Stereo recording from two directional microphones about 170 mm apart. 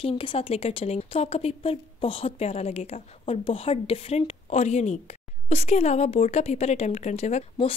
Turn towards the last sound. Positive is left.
turn(degrees=40)  # may be behind; listen again after turning